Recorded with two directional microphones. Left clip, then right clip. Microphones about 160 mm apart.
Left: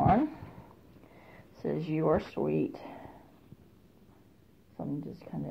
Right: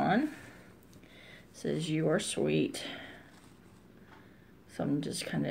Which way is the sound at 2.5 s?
35° right (ahead or behind).